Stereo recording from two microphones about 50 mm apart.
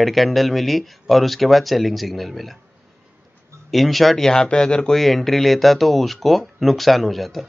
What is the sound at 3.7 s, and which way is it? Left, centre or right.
Speech, centre.